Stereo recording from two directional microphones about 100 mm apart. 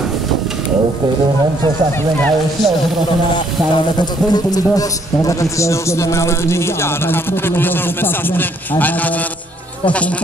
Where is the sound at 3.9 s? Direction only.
45° left (ahead or behind).